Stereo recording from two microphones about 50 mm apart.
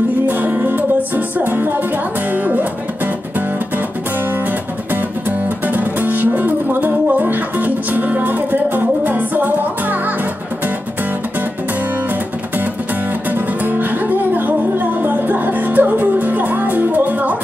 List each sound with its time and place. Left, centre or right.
0.3 s music: right
5.7 s music: right
13.3 s music: right